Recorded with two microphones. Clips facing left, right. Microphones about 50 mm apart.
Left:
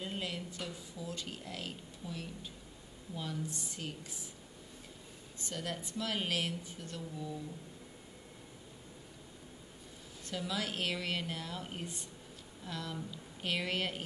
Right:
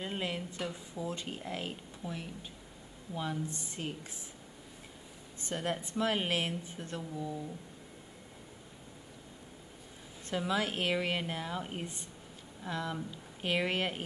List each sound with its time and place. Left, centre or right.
0.0 s speech: right
5.5 s speech: right
10.3 s speech: right